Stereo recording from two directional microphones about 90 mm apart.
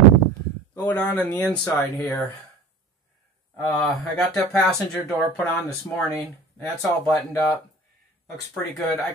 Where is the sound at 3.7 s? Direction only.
5° left (ahead or behind).